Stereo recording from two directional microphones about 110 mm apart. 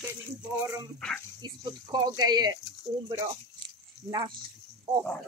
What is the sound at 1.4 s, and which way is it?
Speech, 40° right (ahead or behind).